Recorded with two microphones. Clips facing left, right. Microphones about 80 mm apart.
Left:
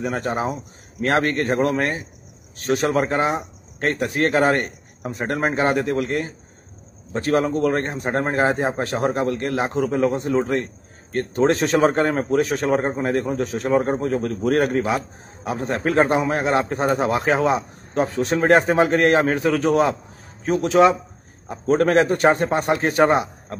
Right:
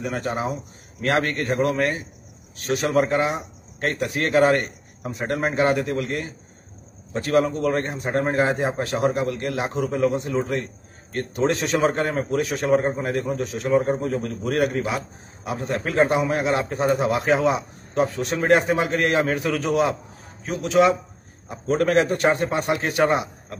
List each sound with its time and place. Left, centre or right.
0.0 s a man's voice: left